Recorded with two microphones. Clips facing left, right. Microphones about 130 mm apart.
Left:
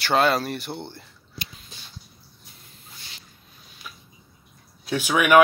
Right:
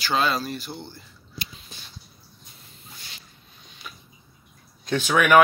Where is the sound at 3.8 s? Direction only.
Centre (ahead or behind).